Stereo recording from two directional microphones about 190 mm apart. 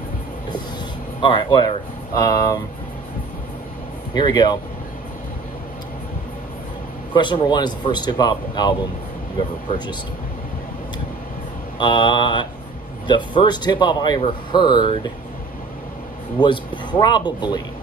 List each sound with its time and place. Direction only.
1.2 s speech: 25° left (ahead or behind)
4.1 s speech: 20° left (ahead or behind)
7.2 s speech: 25° left (ahead or behind)
11.8 s speech: 25° left (ahead or behind)
16.3 s speech: 25° left (ahead or behind)